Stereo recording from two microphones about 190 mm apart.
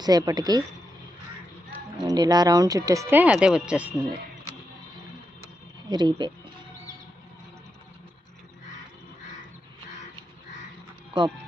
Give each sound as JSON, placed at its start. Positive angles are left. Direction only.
{"t": 0.0, "sound": "speech", "side_deg": -20}
{"t": 2.0, "sound": "speech", "side_deg": -20}
{"t": 5.9, "sound": "speech", "side_deg": -25}